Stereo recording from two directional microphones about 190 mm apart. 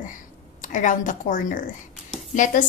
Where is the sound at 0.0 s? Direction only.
40° left (ahead or behind).